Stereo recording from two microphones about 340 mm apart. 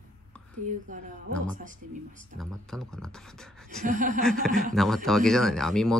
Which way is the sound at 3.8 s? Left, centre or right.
Right.